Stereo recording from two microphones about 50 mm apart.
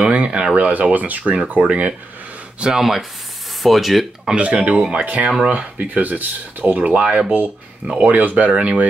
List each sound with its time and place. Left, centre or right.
0.0 s speech: right
2.6 s speech: centre
4.4 s speech: right
8.0 s speech: right